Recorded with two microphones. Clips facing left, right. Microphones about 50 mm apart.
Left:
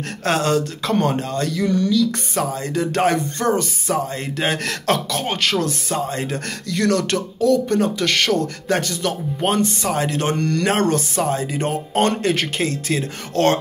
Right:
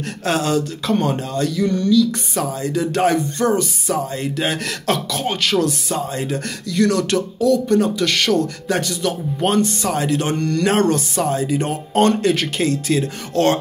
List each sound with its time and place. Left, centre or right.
0.2 s speech: left
2.3 s speech: left
9.4 s speech: left
9.9 s speech: left
10.7 s speech: left